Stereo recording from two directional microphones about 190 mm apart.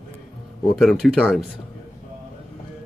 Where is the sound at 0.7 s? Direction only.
Centre (ahead or behind).